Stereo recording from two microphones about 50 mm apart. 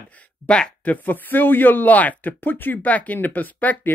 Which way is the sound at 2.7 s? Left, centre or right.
Left.